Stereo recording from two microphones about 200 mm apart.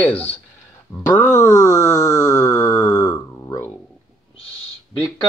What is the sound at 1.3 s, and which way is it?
Groan, 20° left (ahead or behind).